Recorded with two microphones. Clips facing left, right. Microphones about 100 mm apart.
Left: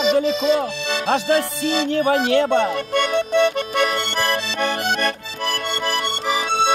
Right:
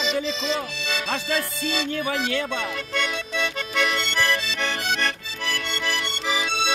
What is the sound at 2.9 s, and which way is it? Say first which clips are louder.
Accordion: left 10 dB; 55° left (ahead or behind).